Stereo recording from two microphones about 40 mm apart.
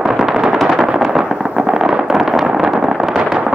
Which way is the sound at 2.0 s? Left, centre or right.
Centre.